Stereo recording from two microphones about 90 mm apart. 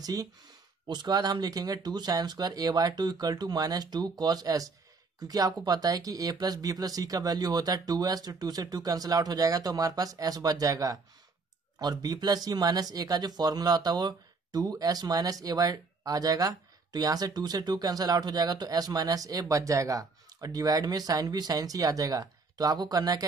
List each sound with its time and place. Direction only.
0.0 s speech: 45° right (ahead or behind)
0.8 s speech: 55° right (ahead or behind)